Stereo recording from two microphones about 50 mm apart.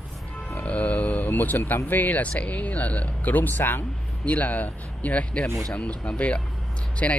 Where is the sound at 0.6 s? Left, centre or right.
Left.